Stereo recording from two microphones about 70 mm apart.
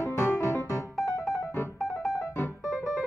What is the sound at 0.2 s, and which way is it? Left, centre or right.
Music, left.